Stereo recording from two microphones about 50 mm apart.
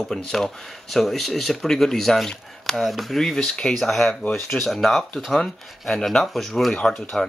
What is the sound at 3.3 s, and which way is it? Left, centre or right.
Speech, centre.